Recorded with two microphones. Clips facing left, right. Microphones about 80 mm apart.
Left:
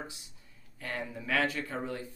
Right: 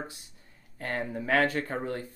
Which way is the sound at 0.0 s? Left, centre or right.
Right.